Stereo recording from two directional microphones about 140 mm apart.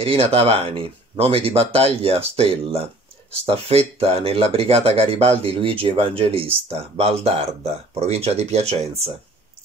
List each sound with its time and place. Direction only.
0.0 s speech: 40° right (ahead or behind)